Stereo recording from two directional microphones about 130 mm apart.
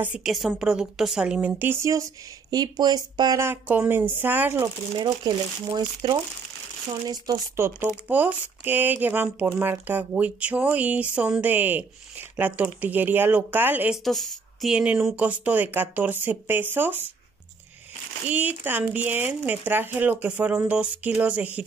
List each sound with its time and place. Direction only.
0.0 s speech: 5° right (ahead or behind); by 3.4 s 30° right (ahead or behind)
3.4 s speech: 10° right (ahead or behind)
4.9 s speech: 35° right (ahead or behind)
7.5 s speech: 20° right (ahead or behind)
13.9 s a woman's voice: centre (ahead or behind); by 17.0 s 15° right (ahead or behind)
18.3 s speech: 15° right (ahead or behind)